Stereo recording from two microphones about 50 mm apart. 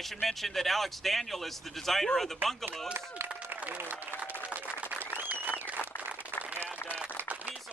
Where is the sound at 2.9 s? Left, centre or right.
Right.